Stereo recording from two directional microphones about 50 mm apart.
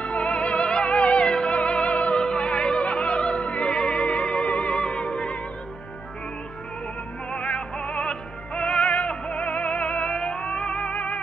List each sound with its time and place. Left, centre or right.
0.0 s music: left
7.3 s music: left